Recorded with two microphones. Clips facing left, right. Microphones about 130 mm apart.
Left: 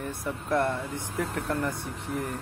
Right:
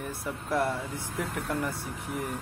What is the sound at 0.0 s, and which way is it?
Speech, 5° right (ahead or behind).